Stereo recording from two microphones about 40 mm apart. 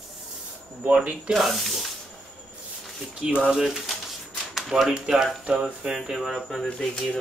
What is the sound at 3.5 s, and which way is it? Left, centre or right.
Speech, centre.